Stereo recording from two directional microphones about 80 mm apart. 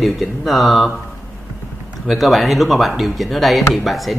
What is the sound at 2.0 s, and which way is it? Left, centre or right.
Speech, centre.